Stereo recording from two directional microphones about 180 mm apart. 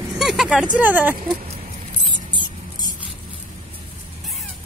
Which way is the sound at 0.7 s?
10° right (ahead or behind).